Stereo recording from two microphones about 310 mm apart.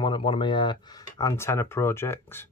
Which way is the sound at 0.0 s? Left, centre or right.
Centre.